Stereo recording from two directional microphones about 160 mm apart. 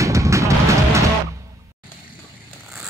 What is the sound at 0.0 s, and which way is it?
Music, 20° right (ahead or behind).